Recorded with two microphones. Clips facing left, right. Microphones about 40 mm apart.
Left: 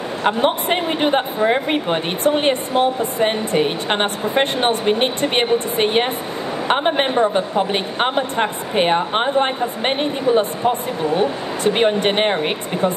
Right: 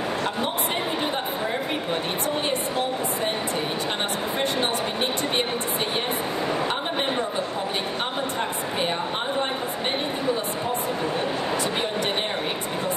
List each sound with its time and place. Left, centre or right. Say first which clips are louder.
0.2 s speech: left 8 dB; left